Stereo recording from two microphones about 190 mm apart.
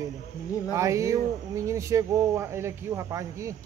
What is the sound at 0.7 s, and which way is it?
Speech, 15° right (ahead or behind).